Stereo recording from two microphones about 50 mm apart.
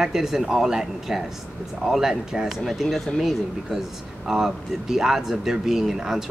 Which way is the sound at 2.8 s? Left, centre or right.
Centre.